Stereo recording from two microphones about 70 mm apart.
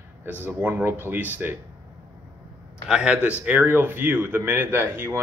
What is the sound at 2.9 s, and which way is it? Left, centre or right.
Speech, centre.